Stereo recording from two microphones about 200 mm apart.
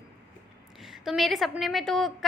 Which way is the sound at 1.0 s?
Centre (ahead or behind).